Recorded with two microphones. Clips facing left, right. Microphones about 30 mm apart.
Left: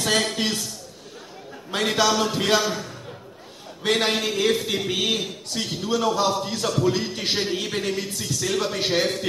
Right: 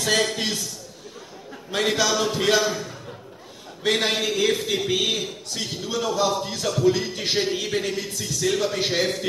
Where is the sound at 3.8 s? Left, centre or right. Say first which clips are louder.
Even; left.